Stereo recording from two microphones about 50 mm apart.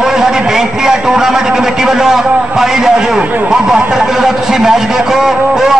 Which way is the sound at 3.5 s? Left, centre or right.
Centre.